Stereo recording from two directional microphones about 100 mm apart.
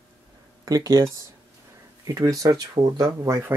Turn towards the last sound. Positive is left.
turn(degrees=-30)  # may be behind; listen again after turning